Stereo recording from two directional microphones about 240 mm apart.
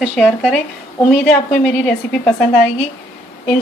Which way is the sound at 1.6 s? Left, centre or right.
Centre.